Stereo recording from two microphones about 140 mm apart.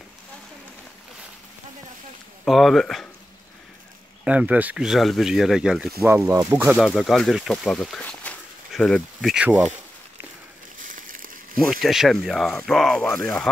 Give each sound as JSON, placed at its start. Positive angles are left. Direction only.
{"t": 2.4, "sound": "speech", "side_deg": 0}
{"t": 4.2, "sound": "speech", "side_deg": -10}
{"t": 5.9, "sound": "speech", "side_deg": -15}
{"t": 8.0, "sound": "a sound", "side_deg": 10}
{"t": 9.3, "sound": "speech", "side_deg": -10}
{"t": 10.8, "sound": "a sound", "side_deg": -70}
{"t": 11.8, "sound": "speech", "side_deg": 0}